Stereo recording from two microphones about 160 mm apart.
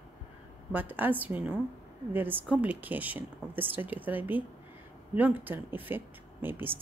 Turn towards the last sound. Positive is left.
turn(degrees=-10)  # may be behind; listen again after turning